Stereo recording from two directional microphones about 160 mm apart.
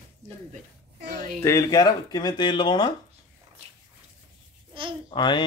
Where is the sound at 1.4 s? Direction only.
20° left (ahead or behind).